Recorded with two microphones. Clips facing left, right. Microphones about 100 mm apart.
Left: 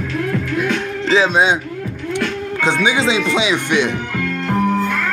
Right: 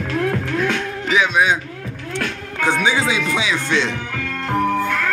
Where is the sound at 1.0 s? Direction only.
30° left (ahead or behind); by 3.9 s 15° left (ahead or behind).